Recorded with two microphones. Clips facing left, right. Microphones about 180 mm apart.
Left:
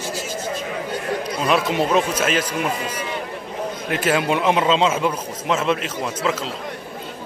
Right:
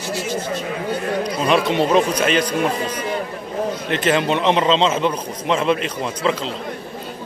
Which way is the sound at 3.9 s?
10° left (ahead or behind).